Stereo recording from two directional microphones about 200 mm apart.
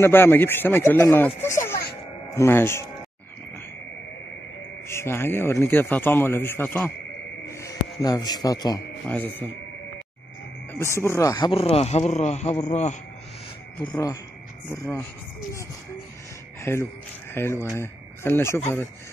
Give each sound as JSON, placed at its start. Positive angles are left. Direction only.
{"t": 0.0, "sound": "a man's voice", "side_deg": 10}
{"t": 4.8, "sound": "a man's voice", "side_deg": 10}
{"t": 9.0, "sound": "a man's voice", "side_deg": 10}
{"t": 11.0, "sound": "speech", "side_deg": 15}
{"t": 13.8, "sound": "a man's voice", "side_deg": 20}
{"t": 16.6, "sound": "speech", "side_deg": 10}